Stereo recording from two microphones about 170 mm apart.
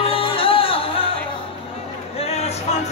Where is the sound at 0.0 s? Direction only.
30° left (ahead or behind).